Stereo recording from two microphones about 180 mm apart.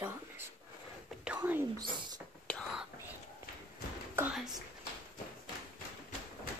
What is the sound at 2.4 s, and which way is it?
Whispering, 5° left (ahead or behind).